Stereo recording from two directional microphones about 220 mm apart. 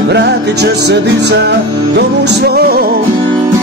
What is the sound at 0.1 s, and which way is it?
Music, 50° right (ahead or behind).